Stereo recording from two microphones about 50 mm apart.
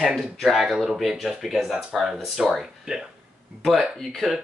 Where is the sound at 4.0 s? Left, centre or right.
Centre.